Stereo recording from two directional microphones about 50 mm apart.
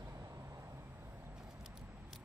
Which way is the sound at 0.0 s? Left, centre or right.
Right.